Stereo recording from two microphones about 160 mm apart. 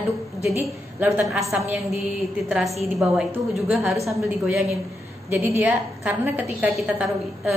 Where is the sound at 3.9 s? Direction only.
20° right (ahead or behind).